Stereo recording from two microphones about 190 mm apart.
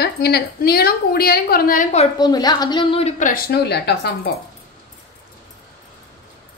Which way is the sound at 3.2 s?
50° left (ahead or behind).